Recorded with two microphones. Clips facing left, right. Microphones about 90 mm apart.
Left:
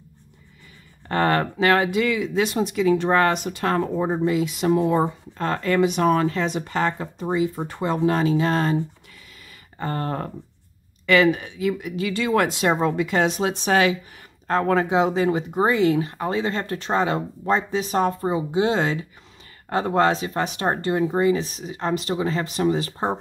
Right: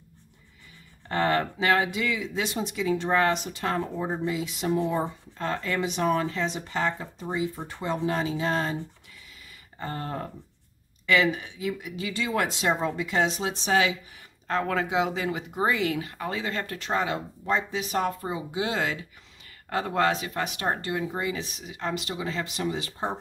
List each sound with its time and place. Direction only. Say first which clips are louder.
1.0 s speech: left 4 dB; 60° left (ahead or behind)
9.8 s speech: left 6 dB; 65° left (ahead or behind)
14.5 s speech: left 6 dB; 40° left (ahead or behind)